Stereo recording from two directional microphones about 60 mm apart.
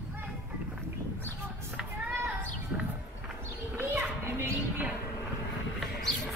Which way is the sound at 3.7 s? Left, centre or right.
Right.